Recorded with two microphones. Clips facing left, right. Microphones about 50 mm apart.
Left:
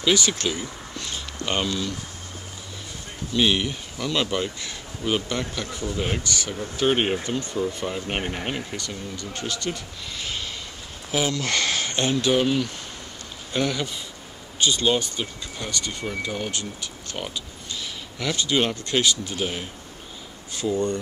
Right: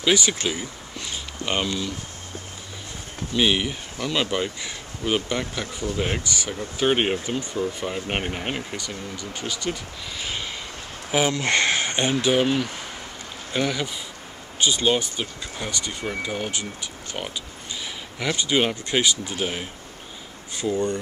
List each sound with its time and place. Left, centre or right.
0.0 s speech: centre
3.3 s speech: centre
11.1 s speech: right
18.2 s speech: centre